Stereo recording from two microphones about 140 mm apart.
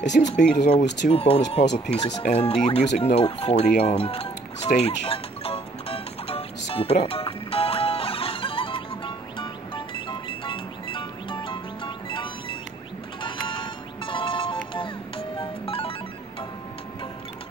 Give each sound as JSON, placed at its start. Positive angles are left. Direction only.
{"t": 0.2, "sound": "speech", "side_deg": 80}
{"t": 0.7, "sound": "speech", "side_deg": 50}
{"t": 2.0, "sound": "speech", "side_deg": 30}
{"t": 2.2, "sound": "speech", "side_deg": 50}
{"t": 3.2, "sound": "music", "side_deg": 45}